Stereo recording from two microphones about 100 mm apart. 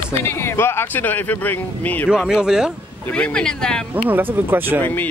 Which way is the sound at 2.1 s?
5° right (ahead or behind).